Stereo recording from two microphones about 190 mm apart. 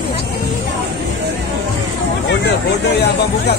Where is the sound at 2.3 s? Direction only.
65° left (ahead or behind).